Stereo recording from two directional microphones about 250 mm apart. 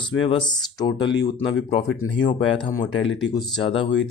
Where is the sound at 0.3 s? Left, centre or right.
Centre.